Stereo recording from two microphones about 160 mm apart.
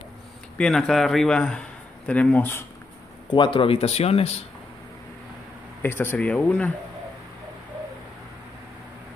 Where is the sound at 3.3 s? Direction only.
30° left (ahead or behind).